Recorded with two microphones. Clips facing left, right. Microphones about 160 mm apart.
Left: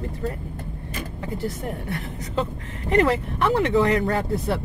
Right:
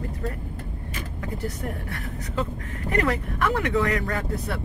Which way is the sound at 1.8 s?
30° left (ahead or behind).